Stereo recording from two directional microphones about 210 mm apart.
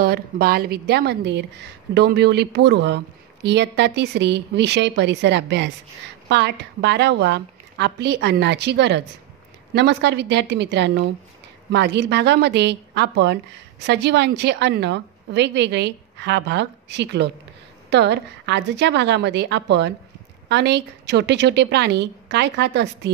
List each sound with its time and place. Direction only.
0.0 s a woman's voice: 45° right (ahead or behind)